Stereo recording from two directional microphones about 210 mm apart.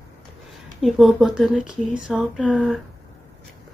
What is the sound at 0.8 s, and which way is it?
Speech, centre (ahead or behind).